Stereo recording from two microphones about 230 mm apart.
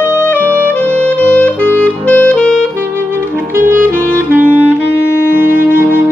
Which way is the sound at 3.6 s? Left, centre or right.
Right.